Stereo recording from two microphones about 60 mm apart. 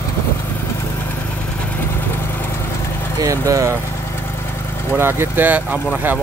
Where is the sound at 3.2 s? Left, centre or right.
Right.